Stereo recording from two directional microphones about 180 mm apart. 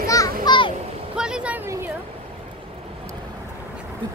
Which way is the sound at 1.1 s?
5° right (ahead or behind).